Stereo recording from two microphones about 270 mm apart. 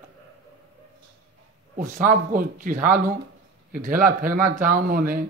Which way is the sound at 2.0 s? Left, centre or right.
Right.